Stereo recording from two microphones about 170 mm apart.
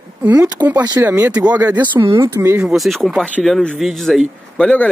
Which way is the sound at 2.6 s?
Centre (ahead or behind).